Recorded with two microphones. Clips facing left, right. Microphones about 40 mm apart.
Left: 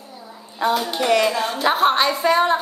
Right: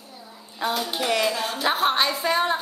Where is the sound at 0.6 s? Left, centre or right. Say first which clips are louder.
Left 5 dB; centre.